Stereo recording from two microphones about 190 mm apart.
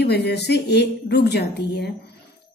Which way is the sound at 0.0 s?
60° left (ahead or behind).